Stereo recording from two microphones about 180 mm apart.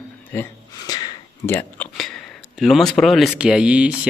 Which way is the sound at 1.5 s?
10° left (ahead or behind).